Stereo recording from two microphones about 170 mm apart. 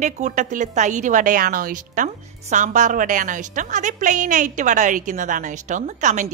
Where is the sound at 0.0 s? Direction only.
45° right (ahead or behind).